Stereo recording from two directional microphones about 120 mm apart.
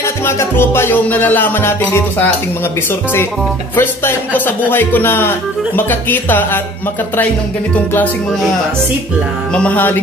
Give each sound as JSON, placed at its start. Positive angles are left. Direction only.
{"t": 0.0, "sound": "music", "side_deg": 20}
{"t": 3.7, "sound": "music", "side_deg": 15}
{"t": 9.5, "sound": "music", "side_deg": 10}